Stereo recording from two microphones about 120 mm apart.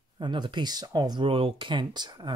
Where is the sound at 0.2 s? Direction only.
40° right (ahead or behind).